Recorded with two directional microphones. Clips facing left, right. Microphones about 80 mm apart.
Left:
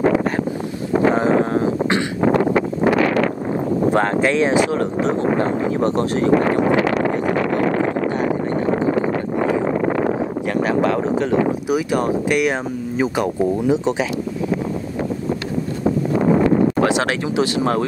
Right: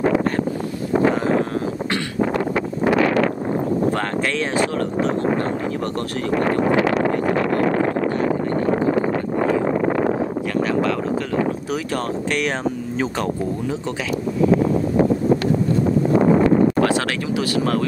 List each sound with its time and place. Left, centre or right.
1.1 s a sound: left
2.2 s a sound: left
3.9 s speech: centre
10.6 s speech: left
11.7 s speech: centre
16.8 s speech: left